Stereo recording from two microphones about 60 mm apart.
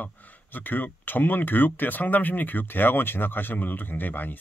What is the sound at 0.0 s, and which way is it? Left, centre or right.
Speech, left.